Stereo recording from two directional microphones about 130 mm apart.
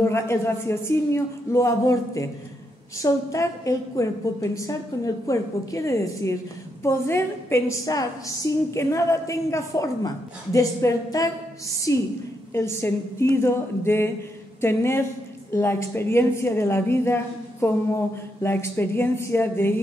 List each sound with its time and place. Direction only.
0.0 s a woman's voice: 20° left (ahead or behind)